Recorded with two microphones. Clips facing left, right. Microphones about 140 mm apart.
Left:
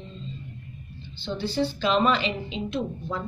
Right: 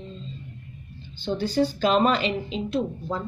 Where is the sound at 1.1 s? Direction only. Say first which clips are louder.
Right 4 dB; 45° right (ahead or behind).